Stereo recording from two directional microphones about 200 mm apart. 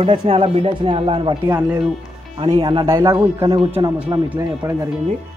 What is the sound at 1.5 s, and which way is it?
Speech, 10° right (ahead or behind).